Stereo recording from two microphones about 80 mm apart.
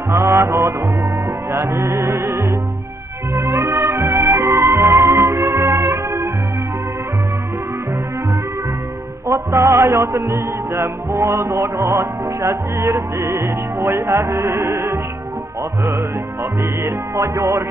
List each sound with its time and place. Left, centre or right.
0.1 s music: right
9.3 s music: right
16.8 s music: right